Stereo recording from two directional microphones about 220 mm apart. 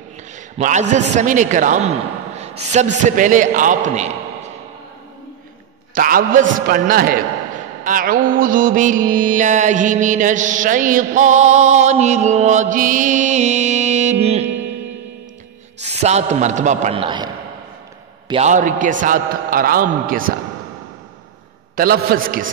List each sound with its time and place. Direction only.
0.6 s a man's voice: 35° right (ahead or behind)
5.9 s a man's voice: 40° right (ahead or behind)
15.8 s a man's voice: 30° right (ahead or behind)
18.3 s a man's voice: 35° right (ahead or behind)
21.7 s a man's voice: 40° right (ahead or behind)